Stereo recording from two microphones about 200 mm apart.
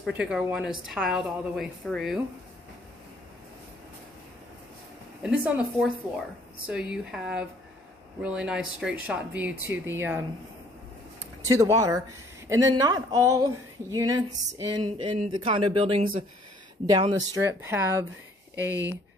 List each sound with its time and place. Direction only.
0.0 s a woman's voice: 5° right (ahead or behind)
5.2 s a woman's voice: 5° right (ahead or behind)
11.4 s speech: 15° right (ahead or behind)